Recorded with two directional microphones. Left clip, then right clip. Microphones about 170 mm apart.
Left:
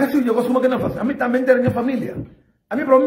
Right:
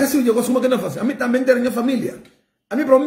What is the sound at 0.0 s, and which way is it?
A man's voice, 20° right (ahead or behind).